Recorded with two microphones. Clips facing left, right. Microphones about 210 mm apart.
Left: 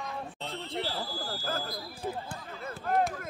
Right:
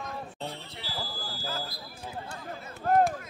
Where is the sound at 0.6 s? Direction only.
50° left (ahead or behind).